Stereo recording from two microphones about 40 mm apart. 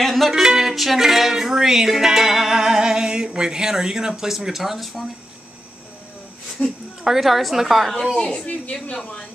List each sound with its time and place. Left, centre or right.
0.0 s music: centre
0.3 s music: centre
4.1 s speech: centre
6.6 s speech: left
7.1 s a woman's voice: centre
8.2 s speech: centre